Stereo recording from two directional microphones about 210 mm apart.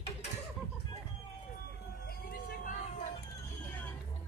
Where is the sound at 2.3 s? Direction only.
45° left (ahead or behind).